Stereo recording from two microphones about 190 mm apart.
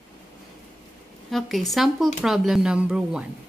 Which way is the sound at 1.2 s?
Centre (ahead or behind).